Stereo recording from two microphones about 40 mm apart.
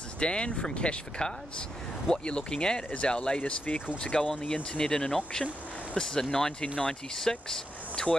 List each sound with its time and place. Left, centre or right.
0.2 s speech: left